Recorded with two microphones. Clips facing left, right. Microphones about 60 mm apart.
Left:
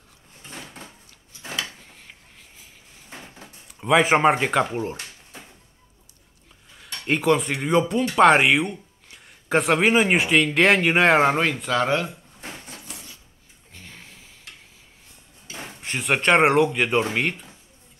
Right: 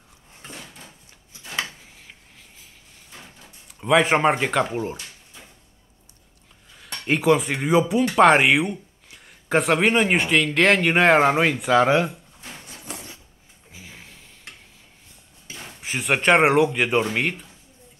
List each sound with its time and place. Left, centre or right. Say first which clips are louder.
1.8 s drawer open or close: even; centre
3.6 s speech: even; centre
6.8 s speech: right 1 dB; centre
12.9 s a sound: right 5 dB; right
13.7 s a sound: right 1 dB; centre
15.8 s speech: right 1 dB; centre